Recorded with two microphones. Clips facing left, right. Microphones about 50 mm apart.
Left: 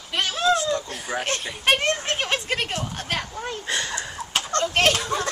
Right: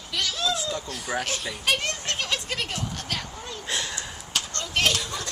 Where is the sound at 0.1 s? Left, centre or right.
Left.